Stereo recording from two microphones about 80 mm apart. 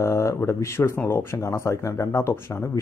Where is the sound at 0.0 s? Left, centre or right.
Left.